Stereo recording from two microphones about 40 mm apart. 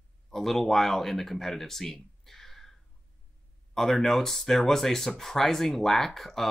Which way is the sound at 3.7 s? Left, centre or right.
Centre.